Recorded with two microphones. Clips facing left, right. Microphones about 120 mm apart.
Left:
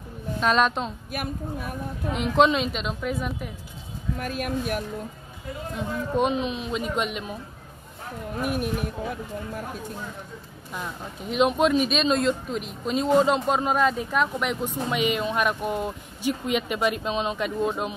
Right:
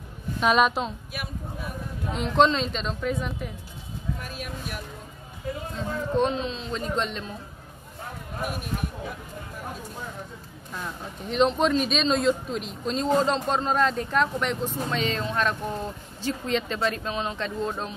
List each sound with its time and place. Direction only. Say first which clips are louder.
0.4 s a woman's voice: right 1 dB; 5° right (ahead or behind)
1.1 s speech: left 9 dB; 50° left (ahead or behind)
2.1 s a woman's voice: left 1 dB; 5° left (ahead or behind)
4.2 s speech: left 8 dB; 50° left (ahead or behind)
5.8 s speech: even; 15° left (ahead or behind)
10.7 s speech: left 1 dB; 5° left (ahead or behind)